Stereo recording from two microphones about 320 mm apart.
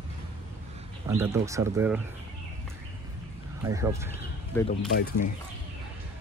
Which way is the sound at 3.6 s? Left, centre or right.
Centre.